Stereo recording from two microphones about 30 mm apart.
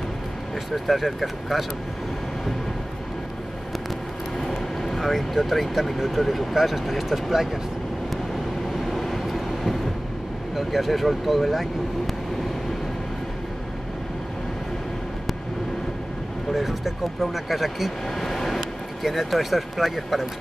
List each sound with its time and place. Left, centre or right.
0.8 s speech: centre
4.4 s speech: centre
8.6 s vehicle: centre
10.5 s speech: centre
16.5 s speech: centre
18.1 s a sound: centre
19.0 s speech: centre